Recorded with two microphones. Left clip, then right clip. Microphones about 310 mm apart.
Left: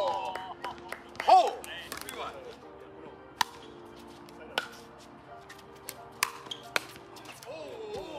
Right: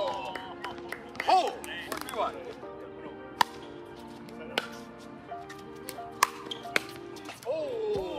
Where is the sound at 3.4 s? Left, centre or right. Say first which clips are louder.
Right 4 dB; centre.